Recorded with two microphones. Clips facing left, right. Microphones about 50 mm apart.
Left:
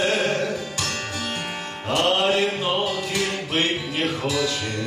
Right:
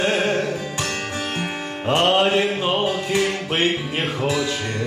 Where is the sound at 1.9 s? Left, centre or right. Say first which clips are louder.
Right 3 dB; right.